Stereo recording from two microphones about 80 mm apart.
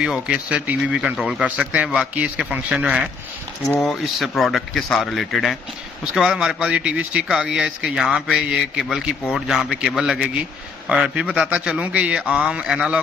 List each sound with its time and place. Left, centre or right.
0.0 s speech: centre
1.6 s speech: centre
3.8 s a man's voice: centre